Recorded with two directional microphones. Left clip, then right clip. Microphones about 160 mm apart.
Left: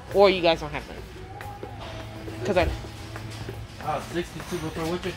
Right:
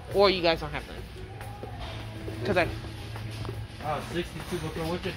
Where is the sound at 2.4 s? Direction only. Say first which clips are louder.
Left 3 dB; 20° left (ahead or behind).